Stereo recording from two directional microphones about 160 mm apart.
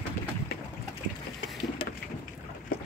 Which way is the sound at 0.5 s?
85° left.